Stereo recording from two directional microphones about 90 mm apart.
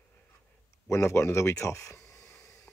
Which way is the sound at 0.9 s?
30° left (ahead or behind).